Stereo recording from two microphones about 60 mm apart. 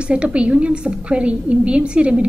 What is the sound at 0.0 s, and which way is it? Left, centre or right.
A woman's voice, centre.